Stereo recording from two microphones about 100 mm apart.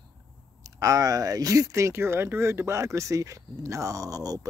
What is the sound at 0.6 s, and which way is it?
Speech, 35° right (ahead or behind).